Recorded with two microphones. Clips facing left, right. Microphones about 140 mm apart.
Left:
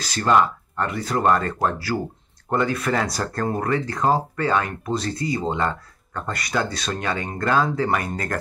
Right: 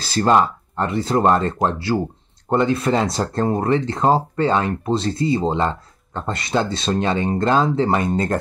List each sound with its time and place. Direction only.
0.0 s speech: 30° right (ahead or behind)